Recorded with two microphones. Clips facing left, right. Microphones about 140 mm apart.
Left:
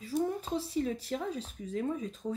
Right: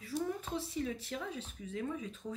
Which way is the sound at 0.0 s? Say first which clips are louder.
Left 5 dB; 35° left (ahead or behind).